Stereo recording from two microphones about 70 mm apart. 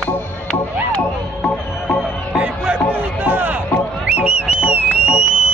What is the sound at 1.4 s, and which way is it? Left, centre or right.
Music, centre.